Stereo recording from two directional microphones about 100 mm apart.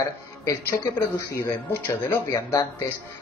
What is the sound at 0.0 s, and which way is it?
A man's voice, 30° left (ahead or behind).